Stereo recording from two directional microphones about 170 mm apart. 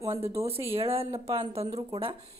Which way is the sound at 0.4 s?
35° right (ahead or behind).